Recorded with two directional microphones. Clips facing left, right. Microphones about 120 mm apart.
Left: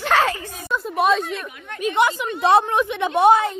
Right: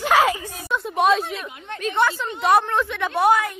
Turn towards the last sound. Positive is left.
turn(degrees=25)  # may be behind; listen again after turning